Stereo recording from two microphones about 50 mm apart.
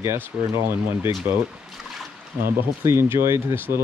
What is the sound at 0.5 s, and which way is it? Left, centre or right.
Speech, right.